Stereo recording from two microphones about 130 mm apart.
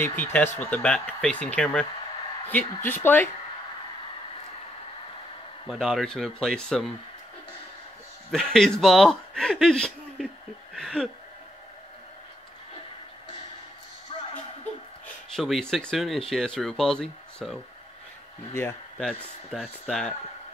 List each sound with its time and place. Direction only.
0.0 s speech: 15° left (ahead or behind)
5.7 s speech: centre (ahead or behind)
8.3 s a man's voice: 5° left (ahead or behind)
10.7 s a sound: 5° left (ahead or behind)
15.3 s speech: centre (ahead or behind)
18.5 s speech: 20° left (ahead or behind)
18.9 s speech: centre (ahead or behind)